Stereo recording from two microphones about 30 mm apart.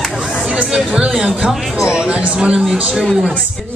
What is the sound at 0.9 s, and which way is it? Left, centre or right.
Speech, right.